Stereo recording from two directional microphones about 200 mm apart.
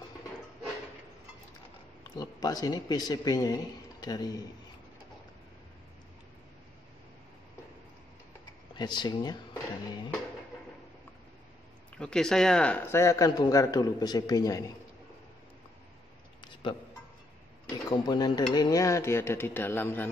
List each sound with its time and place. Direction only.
2.0 s speech: 20° left (ahead or behind)
8.7 s speech: 20° left (ahead or behind)
12.0 s speech: 5° left (ahead or behind)
17.8 s speech: 20° left (ahead or behind)